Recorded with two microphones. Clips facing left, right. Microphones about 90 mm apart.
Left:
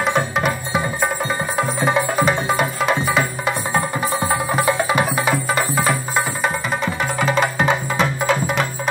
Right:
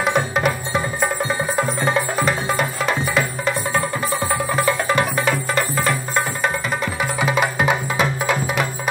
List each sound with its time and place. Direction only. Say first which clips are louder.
0.0 s music: even; centre (ahead or behind)